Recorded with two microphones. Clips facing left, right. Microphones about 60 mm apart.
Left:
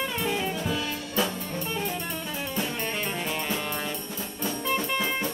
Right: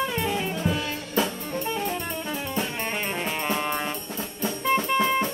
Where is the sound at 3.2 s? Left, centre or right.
Right.